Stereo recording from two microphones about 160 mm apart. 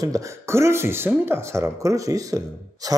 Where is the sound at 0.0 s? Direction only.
20° right (ahead or behind).